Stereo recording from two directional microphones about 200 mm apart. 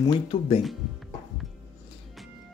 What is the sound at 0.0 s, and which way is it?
Speech, 25° left (ahead or behind).